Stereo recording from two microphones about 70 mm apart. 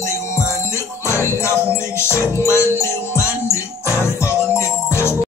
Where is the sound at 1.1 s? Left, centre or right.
Left.